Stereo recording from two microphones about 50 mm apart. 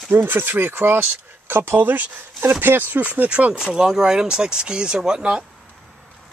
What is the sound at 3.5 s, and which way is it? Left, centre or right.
Speech, centre.